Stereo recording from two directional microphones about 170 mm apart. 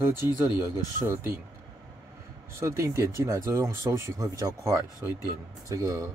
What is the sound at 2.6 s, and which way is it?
Speech, 15° right (ahead or behind).